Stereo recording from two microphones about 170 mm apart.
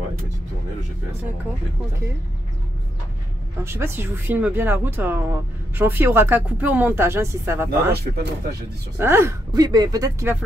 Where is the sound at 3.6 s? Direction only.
15° right (ahead or behind).